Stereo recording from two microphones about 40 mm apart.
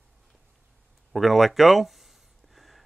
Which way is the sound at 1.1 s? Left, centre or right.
Centre.